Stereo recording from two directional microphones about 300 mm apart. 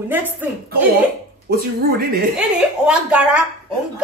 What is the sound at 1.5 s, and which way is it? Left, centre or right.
Speech, right.